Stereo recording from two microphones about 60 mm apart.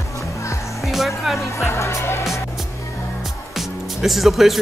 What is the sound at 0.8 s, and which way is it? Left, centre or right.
Speech, centre.